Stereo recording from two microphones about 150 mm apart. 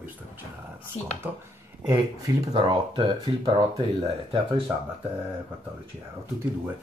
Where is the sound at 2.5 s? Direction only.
35° right (ahead or behind).